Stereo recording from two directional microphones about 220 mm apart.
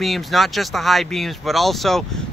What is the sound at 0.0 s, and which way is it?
Speech, centre (ahead or behind).